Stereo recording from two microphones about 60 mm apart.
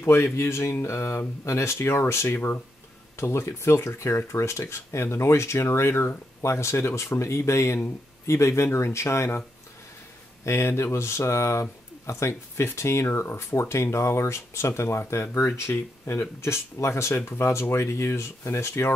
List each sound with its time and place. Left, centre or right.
0.0 s speech: left
3.2 s speech: left
7.2 s speech: left
10.4 s speech: left